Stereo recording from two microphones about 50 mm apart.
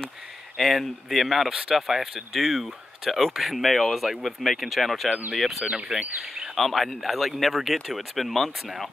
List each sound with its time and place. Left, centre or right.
0.6 s speech: centre
1.5 s speech: centre
1.8 s speech: centre